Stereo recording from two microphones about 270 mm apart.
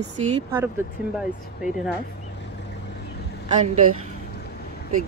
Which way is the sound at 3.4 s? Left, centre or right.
Right.